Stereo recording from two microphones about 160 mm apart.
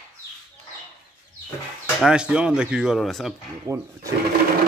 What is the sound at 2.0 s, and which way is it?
Speech, 5° right (ahead or behind).